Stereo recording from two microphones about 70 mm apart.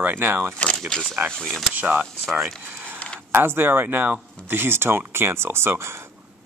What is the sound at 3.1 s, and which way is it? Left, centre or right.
Speech, right.